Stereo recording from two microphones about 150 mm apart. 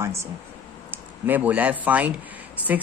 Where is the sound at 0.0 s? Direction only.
20° right (ahead or behind).